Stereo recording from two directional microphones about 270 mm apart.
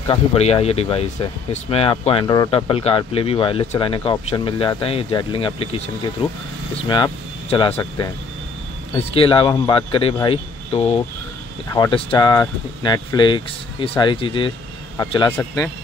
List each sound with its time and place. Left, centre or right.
0.1 s speech: left
9.1 s speech: centre